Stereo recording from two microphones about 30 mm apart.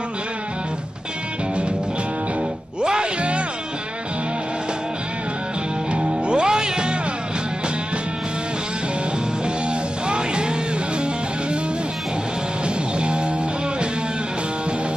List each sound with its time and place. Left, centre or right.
2.8 s music: right
3.2 s music: right
5.9 s music: right
10.0 s music: right
12.6 s music: right